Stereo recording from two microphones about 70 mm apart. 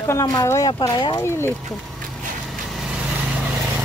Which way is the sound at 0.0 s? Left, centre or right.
Left.